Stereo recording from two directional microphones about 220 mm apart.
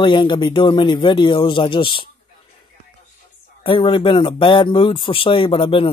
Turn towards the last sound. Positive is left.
turn(degrees=25)  # may be behind; listen again after turning